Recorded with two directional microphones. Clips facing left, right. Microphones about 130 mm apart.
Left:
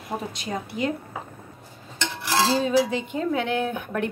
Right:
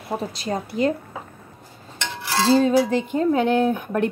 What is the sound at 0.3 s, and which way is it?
Speech, 35° right (ahead or behind).